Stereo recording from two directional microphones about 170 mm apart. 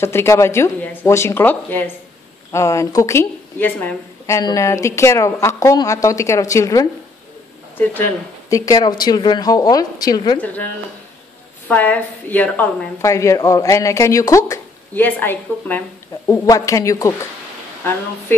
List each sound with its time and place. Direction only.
0.0 s a woman's voice: 15° left (ahead or behind)
8.5 s a woman's voice: 20° left (ahead or behind)
10.4 s a woman's voice: 10° left (ahead or behind)